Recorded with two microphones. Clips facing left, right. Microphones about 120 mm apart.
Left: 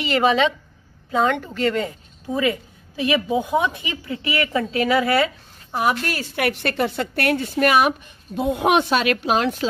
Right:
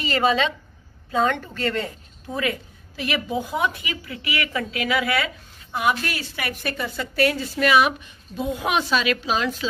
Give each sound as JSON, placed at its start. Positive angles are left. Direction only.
{"t": 0.0, "sound": "a woman's voice", "side_deg": 15}
{"t": 3.0, "sound": "speech", "side_deg": 20}
{"t": 6.3, "sound": "a woman's voice", "side_deg": 65}